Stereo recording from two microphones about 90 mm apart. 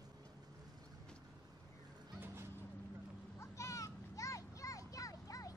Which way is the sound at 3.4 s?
35° left (ahead or behind).